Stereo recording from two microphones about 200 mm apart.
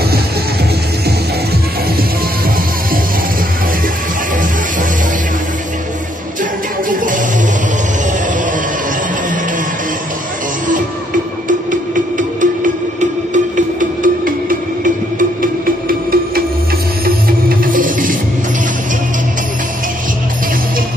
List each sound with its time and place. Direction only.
11.4 s music: 40° right (ahead or behind)